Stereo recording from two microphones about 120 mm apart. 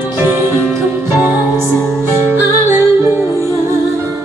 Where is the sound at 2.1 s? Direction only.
20° right (ahead or behind).